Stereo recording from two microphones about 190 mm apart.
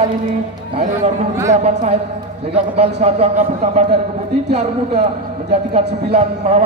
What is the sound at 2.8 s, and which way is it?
Speech, 35° right (ahead or behind).